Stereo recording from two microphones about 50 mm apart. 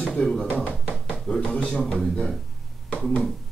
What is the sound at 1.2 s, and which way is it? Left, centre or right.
Speech, centre.